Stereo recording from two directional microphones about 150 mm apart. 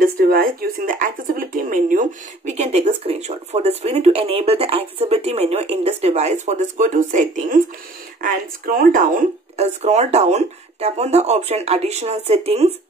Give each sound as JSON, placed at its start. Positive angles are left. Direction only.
{"t": 0.0, "sound": "speech", "side_deg": -75}
{"t": 9.6, "sound": "speech", "side_deg": -45}